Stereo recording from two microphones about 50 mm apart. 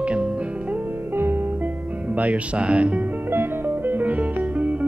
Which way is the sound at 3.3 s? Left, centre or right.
Right.